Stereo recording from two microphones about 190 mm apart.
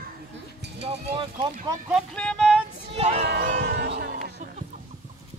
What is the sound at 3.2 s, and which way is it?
Music, 55° right (ahead or behind).